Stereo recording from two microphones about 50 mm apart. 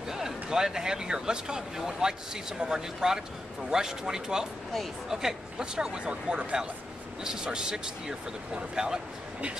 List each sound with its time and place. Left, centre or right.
0.1 s speech: centre